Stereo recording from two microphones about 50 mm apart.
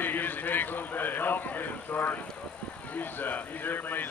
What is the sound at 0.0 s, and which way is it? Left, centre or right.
A man's voice, left.